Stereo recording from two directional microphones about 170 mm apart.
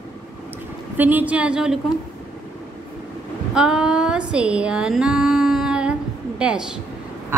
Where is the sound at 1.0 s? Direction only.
10° right (ahead or behind).